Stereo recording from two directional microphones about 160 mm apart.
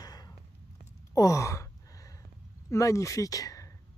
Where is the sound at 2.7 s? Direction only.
20° left (ahead or behind).